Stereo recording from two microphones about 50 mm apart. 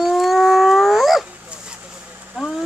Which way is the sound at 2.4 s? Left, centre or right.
Centre.